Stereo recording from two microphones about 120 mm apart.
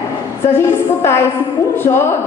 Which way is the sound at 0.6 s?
20° left (ahead or behind).